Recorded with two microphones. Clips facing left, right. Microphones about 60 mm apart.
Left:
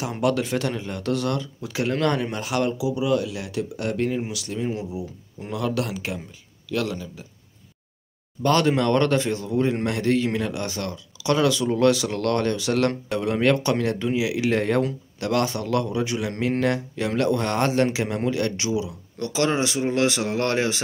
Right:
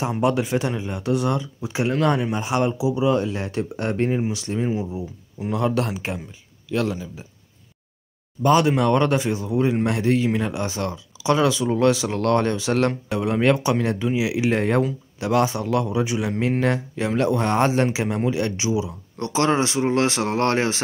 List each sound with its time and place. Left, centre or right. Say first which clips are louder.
0.1 s speech: even; centre
5.4 s speech: right 4 dB; right
8.4 s speech: right 2 dB; centre